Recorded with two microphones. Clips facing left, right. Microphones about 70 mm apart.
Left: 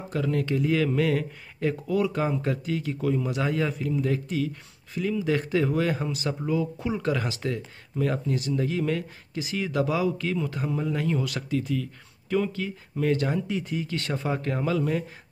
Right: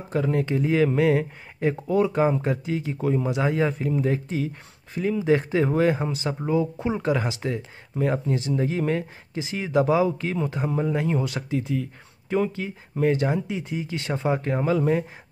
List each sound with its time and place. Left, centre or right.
0.1 s speech: right